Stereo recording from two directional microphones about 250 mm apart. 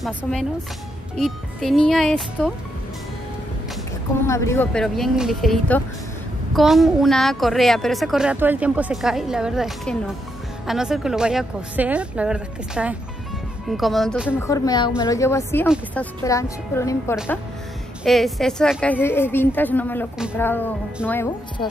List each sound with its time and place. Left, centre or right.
0.0 s a woman's voice: centre
4.3 s a woman's voice: centre
14.4 s a woman's voice: centre